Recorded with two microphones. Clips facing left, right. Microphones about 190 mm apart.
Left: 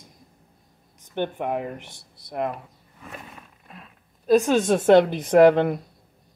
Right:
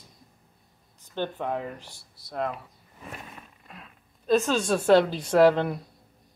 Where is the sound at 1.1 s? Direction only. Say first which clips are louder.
Left 3 dB; 15° left (ahead or behind).